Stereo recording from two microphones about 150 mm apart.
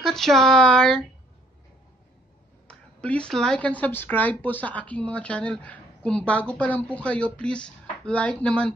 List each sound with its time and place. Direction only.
0.0 s speech: centre (ahead or behind)
2.7 s speech: 5° left (ahead or behind)